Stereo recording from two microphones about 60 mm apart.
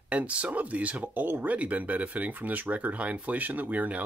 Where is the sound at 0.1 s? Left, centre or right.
Right.